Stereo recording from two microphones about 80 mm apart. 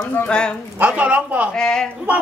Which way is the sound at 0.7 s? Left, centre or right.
Centre.